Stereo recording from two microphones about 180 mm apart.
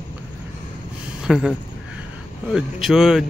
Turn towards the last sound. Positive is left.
turn(degrees=0)  # may be behind; listen again after turning